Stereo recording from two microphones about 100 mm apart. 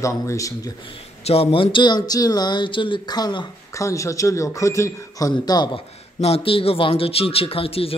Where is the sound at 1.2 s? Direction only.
75° left (ahead or behind); by 3.8 s 45° left (ahead or behind).